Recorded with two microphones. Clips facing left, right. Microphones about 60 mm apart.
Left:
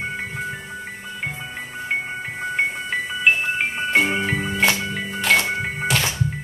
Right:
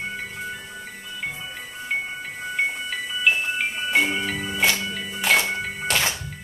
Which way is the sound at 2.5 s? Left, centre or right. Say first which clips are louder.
Left 2 dB; left.